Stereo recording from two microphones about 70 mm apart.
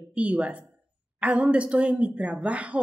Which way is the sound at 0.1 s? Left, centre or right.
Centre.